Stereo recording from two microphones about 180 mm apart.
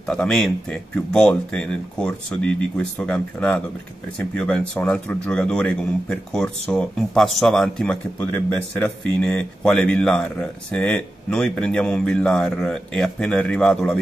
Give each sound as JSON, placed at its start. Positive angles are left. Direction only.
{"t": 0.0, "sound": "a man's voice", "side_deg": 5}